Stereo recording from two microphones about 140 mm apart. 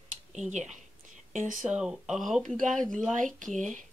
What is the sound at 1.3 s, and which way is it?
Speech, 70° right (ahead or behind).